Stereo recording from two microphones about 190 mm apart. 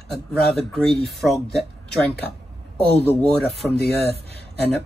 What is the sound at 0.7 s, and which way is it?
Speech, centre (ahead or behind).